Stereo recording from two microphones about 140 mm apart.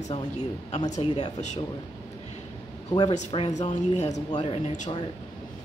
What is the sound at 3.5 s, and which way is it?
Speech, 55° left (ahead or behind).